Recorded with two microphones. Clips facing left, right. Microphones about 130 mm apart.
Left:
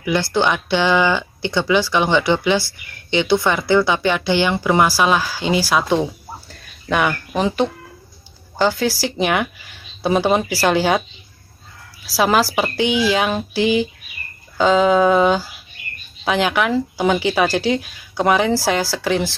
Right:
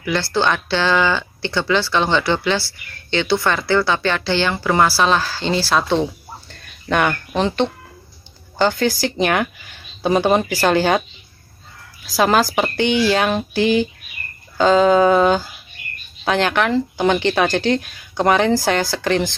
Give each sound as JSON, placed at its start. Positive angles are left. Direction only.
{"t": 0.0, "sound": "speech", "side_deg": 15}
{"t": 12.1, "sound": "speech", "side_deg": 5}